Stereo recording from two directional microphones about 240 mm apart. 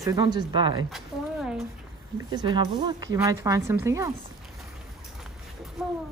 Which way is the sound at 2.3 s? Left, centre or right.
Centre.